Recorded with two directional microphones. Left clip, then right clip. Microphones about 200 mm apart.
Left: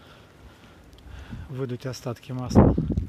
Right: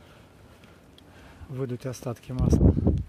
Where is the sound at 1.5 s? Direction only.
Centre (ahead or behind).